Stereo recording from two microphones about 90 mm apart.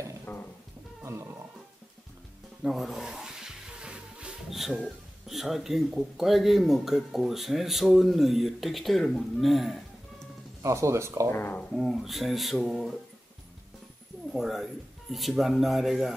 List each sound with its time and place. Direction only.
0.3 s a sound: 20° left (ahead or behind)
1.0 s roaring cats: 30° right (ahead or behind)
2.6 s speech: centre (ahead or behind)
10.6 s speech: 35° right (ahead or behind)
11.2 s speech: 25° left (ahead or behind)
11.7 s speech: 5° right (ahead or behind)
14.3 s speech: centre (ahead or behind)